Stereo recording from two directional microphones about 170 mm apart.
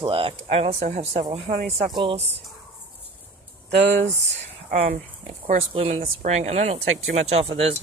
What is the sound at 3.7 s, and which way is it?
Speech, 90° right.